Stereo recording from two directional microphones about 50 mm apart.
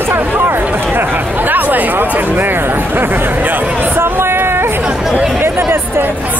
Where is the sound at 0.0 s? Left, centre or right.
Right.